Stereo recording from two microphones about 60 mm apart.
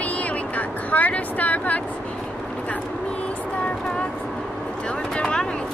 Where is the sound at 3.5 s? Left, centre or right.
Centre.